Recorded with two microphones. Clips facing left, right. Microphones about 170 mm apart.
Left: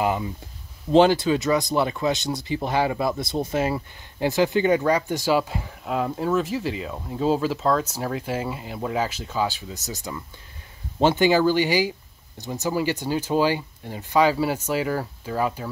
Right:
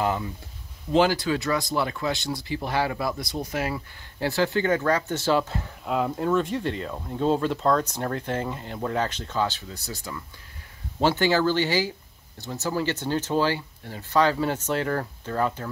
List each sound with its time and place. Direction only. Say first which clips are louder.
0.0 s speech: left 2 dB; 15° left (ahead or behind)